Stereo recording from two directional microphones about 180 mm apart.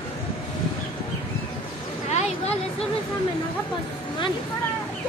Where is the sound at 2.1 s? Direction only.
35° left (ahead or behind).